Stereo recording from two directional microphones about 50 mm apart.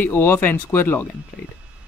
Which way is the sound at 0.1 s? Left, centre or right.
Left.